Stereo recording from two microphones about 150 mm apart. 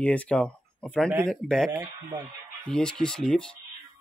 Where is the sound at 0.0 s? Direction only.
10° left (ahead or behind).